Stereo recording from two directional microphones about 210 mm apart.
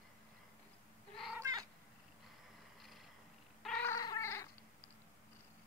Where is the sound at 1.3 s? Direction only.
15° right (ahead or behind).